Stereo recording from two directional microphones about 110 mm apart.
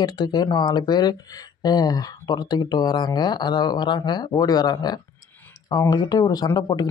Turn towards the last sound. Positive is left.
turn(degrees=35)  # may be behind; listen again after turning